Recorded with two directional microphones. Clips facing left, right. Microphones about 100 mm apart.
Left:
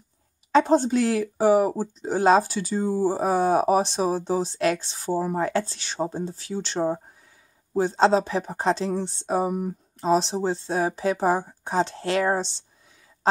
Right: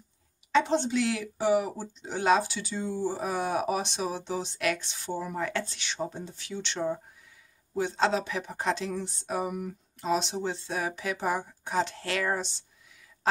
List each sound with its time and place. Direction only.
0.5 s speech: 40° left (ahead or behind)